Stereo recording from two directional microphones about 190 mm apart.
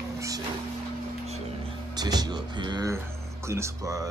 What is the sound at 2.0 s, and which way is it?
Music, 20° right (ahead or behind).